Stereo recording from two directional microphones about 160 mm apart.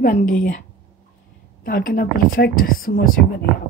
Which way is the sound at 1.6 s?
65° left (ahead or behind).